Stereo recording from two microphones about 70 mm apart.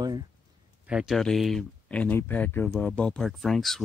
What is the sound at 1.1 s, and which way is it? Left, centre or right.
Speech, centre.